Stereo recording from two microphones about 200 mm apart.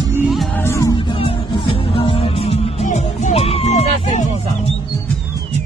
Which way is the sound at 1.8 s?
30° left (ahead or behind).